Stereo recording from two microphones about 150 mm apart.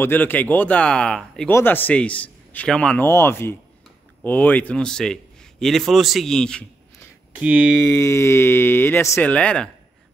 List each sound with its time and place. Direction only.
0.0 s a man's voice: 15° left (ahead or behind)
7.3 s speech: 10° right (ahead or behind)
7.9 s speech: 20° left (ahead or behind)